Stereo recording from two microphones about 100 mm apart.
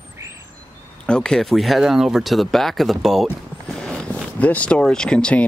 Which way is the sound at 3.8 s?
10° left (ahead or behind).